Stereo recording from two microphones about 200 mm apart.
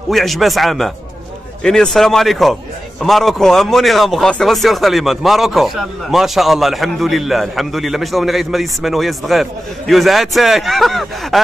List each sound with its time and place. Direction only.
0.1 s speech: centre (ahead or behind)